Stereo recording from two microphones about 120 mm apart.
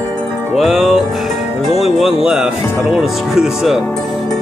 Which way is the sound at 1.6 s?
Centre (ahead or behind).